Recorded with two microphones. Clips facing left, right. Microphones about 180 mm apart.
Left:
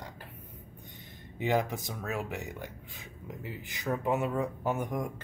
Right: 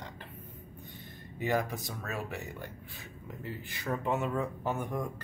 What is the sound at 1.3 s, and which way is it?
Speech, 20° left (ahead or behind).